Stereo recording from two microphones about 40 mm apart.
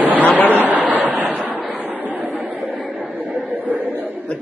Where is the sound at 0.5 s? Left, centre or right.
Right.